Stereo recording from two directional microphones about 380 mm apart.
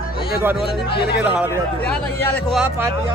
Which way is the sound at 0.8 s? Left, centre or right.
Left.